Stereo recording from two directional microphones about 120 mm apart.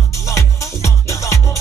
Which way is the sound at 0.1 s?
25° left (ahead or behind).